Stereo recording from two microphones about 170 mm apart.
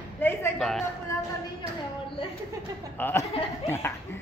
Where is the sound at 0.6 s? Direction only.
Centre (ahead or behind).